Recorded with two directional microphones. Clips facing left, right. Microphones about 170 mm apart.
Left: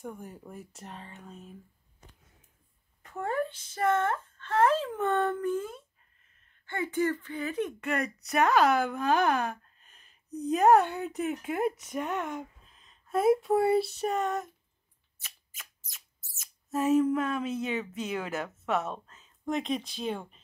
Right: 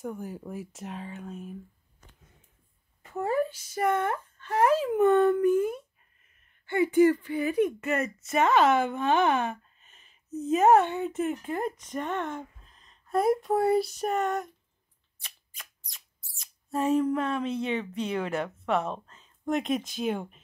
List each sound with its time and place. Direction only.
0.0 s speech: 5° right (ahead or behind)
3.0 s speech: 5° right (ahead or behind)
16.9 s speech: 5° left (ahead or behind)